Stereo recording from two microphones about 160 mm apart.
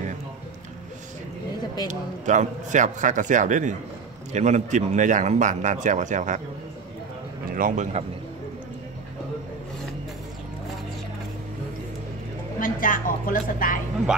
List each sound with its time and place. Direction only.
1.9 s speech: 50° right (ahead or behind)
7.4 s speech: 60° right (ahead or behind)
12.5 s a woman's voice: 55° left (ahead or behind)